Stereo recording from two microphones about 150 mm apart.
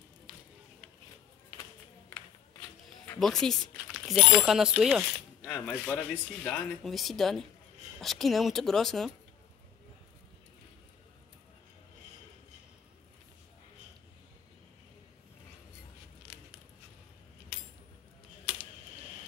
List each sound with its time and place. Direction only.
3.2 s speech: centre (ahead or behind)